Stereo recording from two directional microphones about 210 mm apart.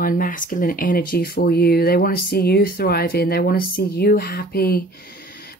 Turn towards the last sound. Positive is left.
turn(degrees=45)  # may be behind; listen again after turning